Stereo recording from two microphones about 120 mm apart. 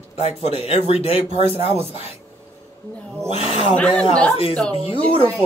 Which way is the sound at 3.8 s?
5° left (ahead or behind).